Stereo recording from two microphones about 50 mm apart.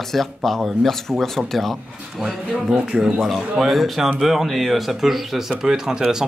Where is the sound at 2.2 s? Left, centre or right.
Centre.